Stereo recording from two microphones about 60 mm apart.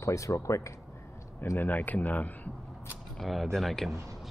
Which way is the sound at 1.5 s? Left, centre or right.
Left.